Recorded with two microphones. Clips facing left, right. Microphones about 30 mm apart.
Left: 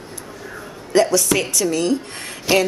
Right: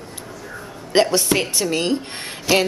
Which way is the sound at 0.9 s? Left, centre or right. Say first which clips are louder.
Left 1 dB; right.